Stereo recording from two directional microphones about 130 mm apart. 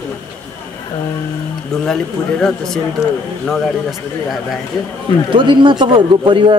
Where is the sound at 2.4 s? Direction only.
5° left (ahead or behind).